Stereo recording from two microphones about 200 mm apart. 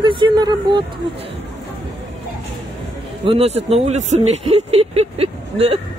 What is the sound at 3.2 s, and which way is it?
Speech, 30° right (ahead or behind).